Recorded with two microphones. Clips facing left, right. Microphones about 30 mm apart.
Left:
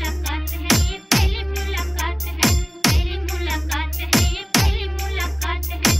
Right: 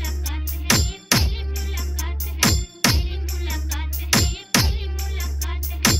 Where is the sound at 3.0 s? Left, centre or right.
Left.